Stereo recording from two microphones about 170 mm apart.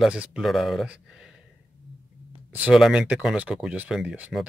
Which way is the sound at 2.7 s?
5° right (ahead or behind).